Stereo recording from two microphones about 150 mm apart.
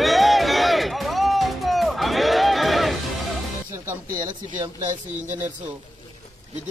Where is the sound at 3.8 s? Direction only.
25° right (ahead or behind).